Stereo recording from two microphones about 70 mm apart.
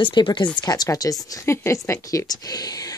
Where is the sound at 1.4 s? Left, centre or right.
Left.